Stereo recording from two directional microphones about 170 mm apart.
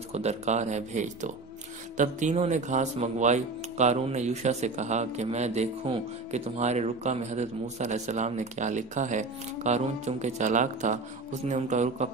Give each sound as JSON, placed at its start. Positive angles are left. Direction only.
{"t": 0.1, "sound": "speech", "side_deg": -40}